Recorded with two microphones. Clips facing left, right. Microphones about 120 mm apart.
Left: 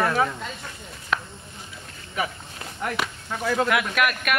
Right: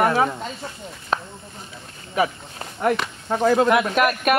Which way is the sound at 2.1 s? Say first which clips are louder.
Right 7 dB; 35° right (ahead or behind).